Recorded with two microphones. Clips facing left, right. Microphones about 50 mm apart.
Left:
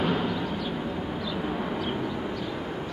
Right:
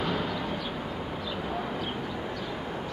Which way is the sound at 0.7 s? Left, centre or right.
Centre.